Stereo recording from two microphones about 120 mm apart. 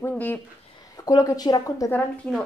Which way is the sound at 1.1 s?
30° left (ahead or behind).